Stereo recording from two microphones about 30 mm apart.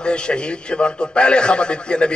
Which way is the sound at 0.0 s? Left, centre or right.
Left.